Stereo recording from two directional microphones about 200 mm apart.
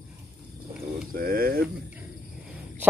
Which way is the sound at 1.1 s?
50° right (ahead or behind).